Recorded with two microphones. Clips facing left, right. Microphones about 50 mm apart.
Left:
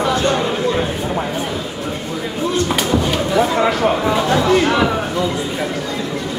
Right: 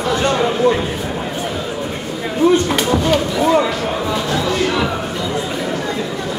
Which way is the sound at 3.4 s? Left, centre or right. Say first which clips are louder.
Even; left.